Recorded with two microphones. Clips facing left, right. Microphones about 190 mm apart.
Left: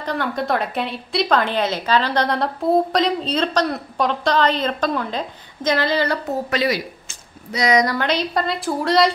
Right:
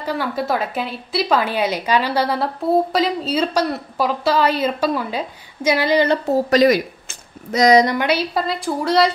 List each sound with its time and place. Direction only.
0.0 s a woman's voice: 5° right (ahead or behind)
6.2 s speech: 40° right (ahead or behind)
7.1 s a sound: 45° right (ahead or behind)
7.7 s a woman's voice: 20° right (ahead or behind); by 9.1 s centre (ahead or behind)